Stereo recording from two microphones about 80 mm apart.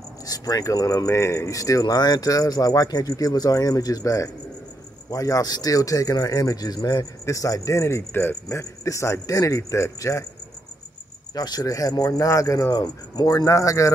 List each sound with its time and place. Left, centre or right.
0.3 s speech: left
7.0 s speech: left
11.3 s speech: left
12.7 s speech: left